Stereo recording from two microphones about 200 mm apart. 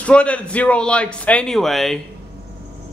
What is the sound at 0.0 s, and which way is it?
A man's voice, 5° left (ahead or behind).